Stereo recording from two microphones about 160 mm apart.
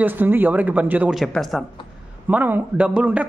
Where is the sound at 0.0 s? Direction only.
10° right (ahead or behind).